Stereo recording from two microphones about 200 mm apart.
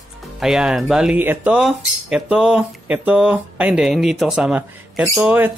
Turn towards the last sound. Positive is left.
turn(degrees=-10)  # may be behind; listen again after turning